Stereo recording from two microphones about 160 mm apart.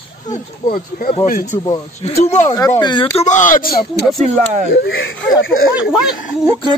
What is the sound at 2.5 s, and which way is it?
Speech, 20° left (ahead or behind).